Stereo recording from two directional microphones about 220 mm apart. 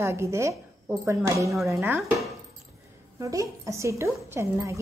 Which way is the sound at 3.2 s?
15° right (ahead or behind).